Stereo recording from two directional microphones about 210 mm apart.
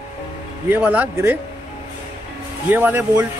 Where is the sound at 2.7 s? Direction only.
10° right (ahead or behind).